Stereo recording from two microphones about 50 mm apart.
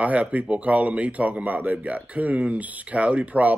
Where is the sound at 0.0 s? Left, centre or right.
Right.